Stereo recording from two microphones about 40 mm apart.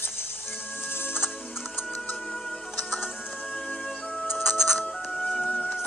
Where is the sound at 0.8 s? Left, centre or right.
Left.